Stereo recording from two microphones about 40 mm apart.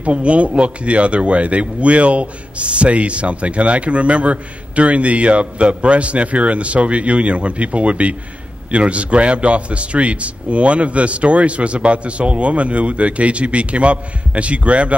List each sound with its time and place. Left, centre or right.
0.0 s speech: right